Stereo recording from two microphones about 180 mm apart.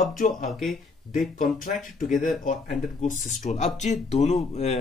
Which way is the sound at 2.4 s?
45° left (ahead or behind).